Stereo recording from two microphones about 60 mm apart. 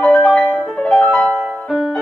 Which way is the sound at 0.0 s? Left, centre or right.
Centre.